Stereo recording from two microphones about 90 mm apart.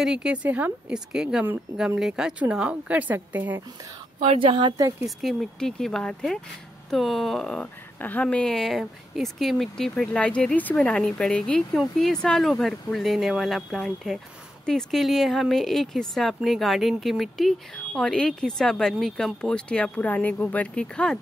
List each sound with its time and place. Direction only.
0.0 s a woman's voice: 10° right (ahead or behind)
4.2 s speech: 85° right; by 4.7 s 65° right (ahead or behind)
4.7 s speech: 35° right (ahead or behind)
5.2 s speech: centre (ahead or behind)
10.1 s speech: 15° left (ahead or behind)
10.8 s speech: 5° left (ahead or behind)